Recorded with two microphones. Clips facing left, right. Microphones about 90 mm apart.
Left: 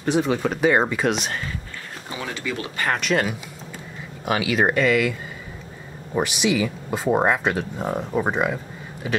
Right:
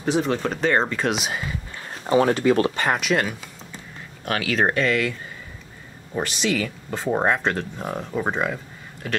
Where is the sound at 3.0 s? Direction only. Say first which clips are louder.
Left 1 dB; centre (ahead or behind).